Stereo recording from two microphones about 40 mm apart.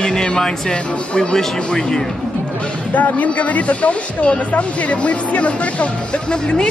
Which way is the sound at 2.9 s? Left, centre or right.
Left.